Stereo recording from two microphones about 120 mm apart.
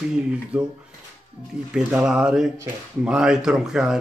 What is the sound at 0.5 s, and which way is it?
Speech, 10° right (ahead or behind).